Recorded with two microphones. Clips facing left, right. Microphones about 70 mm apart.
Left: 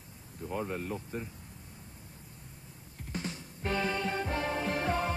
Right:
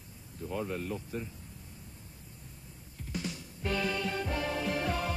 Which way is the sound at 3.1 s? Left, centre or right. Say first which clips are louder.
Even; left.